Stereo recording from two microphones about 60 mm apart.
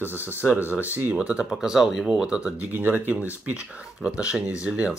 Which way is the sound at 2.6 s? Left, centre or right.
Right.